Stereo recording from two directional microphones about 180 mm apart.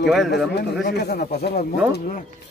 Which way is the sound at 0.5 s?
65° left (ahead or behind).